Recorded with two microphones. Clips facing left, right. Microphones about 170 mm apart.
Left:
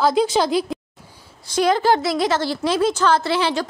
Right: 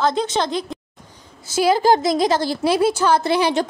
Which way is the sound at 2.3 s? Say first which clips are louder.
Right 2 dB; 15° right (ahead or behind).